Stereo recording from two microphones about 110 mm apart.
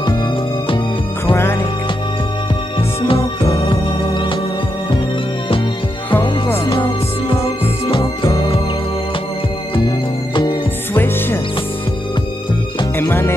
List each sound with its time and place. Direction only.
1.3 s music: 20° left (ahead or behind)
3.0 s music: 60° left (ahead or behind)
3.5 s organ: 50° left (ahead or behind)
6.7 s music: 50° left (ahead or behind)
7.8 s music: 30° left (ahead or behind)
9.8 s music: 45° left (ahead or behind)
11.0 s music: 20° left (ahead or behind)
12.9 s music: 20° left (ahead or behind)